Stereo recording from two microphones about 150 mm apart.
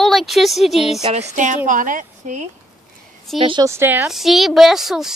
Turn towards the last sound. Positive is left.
turn(degrees=0)  # may be behind; listen again after turning